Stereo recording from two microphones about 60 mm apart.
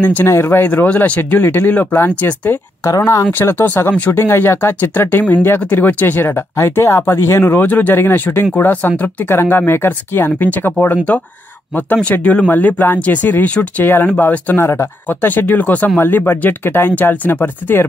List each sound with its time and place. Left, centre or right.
0.0 s speech: left
0.3 s speech: left
0.8 s speech: left
1.4 s speech: left
16.0 s speech: left